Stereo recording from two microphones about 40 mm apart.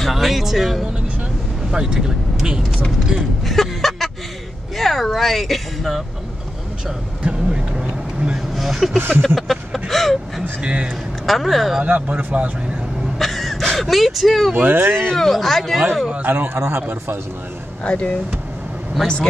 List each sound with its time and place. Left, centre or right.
0.0 s speech: centre
3.2 s a sound: centre
4.7 s speech: centre
7.4 s vehicle: centre
8.5 s speech: centre
9.2 s a sound: centre
10.6 s speech: right
11.2 s speech: centre
11.8 s speech: right
13.2 s speech: centre
14.7 s speech: right
15.1 s speech: centre
16.3 s speech: right
17.8 s speech: left